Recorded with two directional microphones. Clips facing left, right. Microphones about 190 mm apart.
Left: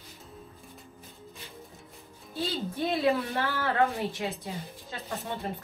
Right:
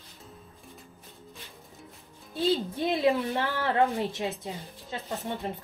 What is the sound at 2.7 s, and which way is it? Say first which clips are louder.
A woman's voice: right 1 dB; 20° right (ahead or behind).